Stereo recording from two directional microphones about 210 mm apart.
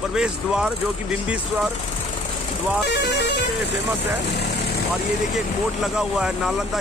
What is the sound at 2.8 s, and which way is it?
Speech, 55° left (ahead or behind).